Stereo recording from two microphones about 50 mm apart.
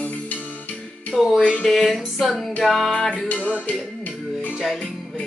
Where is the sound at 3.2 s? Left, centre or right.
Left.